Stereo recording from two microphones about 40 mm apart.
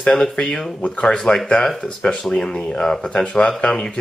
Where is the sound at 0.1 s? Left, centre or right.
Centre.